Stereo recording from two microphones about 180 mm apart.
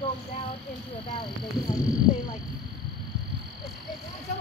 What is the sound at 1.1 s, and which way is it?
Speech, 25° left (ahead or behind).